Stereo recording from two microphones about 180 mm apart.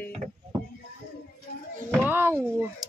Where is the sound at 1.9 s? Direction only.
10° right (ahead or behind).